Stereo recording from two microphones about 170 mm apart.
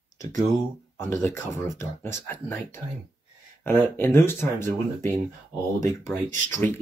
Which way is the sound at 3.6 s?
15° left (ahead or behind).